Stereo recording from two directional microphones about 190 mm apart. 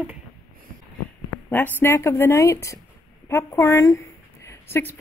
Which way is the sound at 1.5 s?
10° left (ahead or behind).